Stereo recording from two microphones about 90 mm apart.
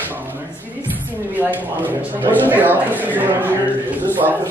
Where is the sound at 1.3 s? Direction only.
20° right (ahead or behind).